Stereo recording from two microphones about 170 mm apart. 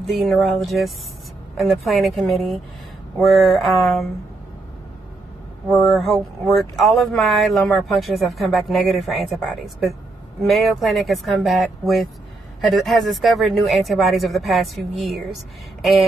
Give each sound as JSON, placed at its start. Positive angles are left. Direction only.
{"t": 0.0, "sound": "speech", "side_deg": 0}
{"t": 5.7, "sound": "speech", "side_deg": 0}
{"t": 10.4, "sound": "speech", "side_deg": 0}
{"t": 15.8, "sound": "a sound", "side_deg": 0}